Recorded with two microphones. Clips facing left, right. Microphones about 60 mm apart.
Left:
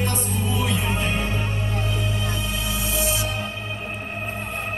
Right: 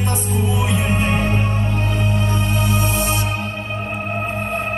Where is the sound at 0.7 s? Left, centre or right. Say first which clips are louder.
Right 5 dB; right.